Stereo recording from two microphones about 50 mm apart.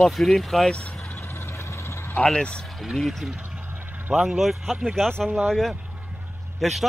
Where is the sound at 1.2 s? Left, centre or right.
Left.